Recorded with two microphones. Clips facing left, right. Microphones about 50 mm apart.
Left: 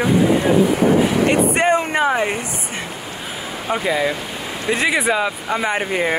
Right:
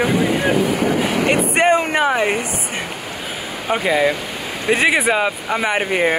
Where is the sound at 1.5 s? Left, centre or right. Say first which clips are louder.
Right 2 dB; right.